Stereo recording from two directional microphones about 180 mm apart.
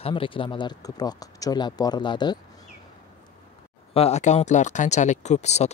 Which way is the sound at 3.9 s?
35° left (ahead or behind).